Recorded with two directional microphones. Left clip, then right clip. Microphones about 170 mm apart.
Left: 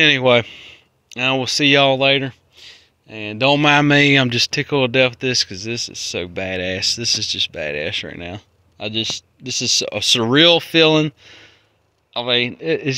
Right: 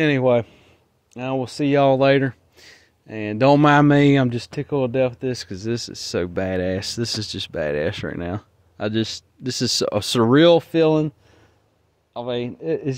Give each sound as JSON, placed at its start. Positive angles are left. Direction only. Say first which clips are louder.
{"t": 0.2, "sound": "speech", "louder": "left 4 dB", "side_deg": 0}
{"t": 2.0, "sound": "speech", "louder": "left 1 dB", "side_deg": -40}
{"t": 3.6, "sound": "speech", "louder": "left 2 dB", "side_deg": -25}
{"t": 4.3, "sound": "speech", "louder": "left 8 dB", "side_deg": 0}
{"t": 5.6, "sound": "speech", "louder": "left 2 dB", "side_deg": -40}
{"t": 10.2, "sound": "speech", "louder": "even", "side_deg": -15}
{"t": 10.6, "sound": "speech", "louder": "left 4 dB", "side_deg": 0}